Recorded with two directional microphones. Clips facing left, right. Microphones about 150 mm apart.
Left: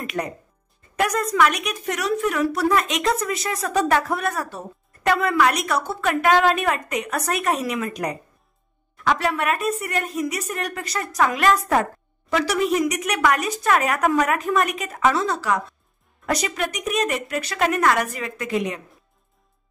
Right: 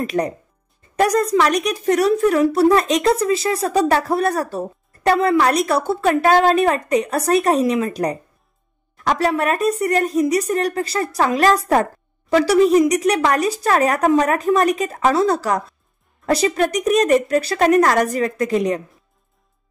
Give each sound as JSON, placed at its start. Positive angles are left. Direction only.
{"t": 0.0, "sound": "speech", "side_deg": -35}